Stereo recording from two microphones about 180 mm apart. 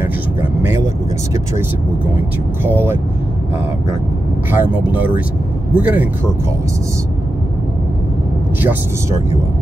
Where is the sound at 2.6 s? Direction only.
10° right (ahead or behind).